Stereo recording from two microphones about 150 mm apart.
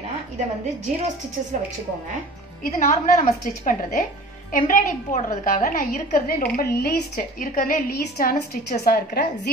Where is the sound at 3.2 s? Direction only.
60° left (ahead or behind).